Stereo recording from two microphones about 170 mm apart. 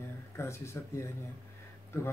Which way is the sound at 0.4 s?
15° left (ahead or behind).